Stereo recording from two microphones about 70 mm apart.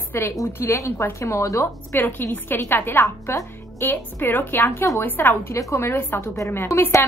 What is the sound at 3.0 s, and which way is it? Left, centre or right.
A woman's voice, left.